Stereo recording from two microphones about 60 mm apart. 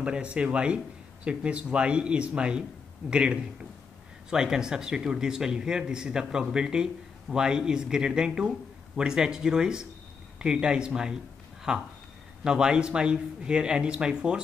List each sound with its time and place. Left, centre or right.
0.0 s speech: centre